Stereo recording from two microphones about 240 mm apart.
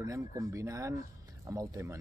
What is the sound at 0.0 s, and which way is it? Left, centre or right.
A man's voice, centre.